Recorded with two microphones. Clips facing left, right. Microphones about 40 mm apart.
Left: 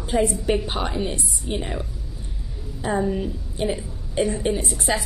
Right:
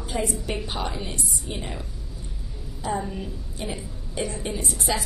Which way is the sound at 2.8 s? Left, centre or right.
Left.